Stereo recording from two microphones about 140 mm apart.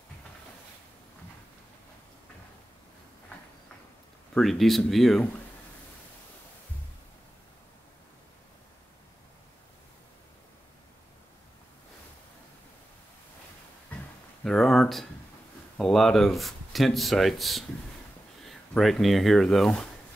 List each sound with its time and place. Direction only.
4.3 s speech: centre (ahead or behind)
14.4 s a sound: 5° left (ahead or behind)
15.8 s speech: centre (ahead or behind)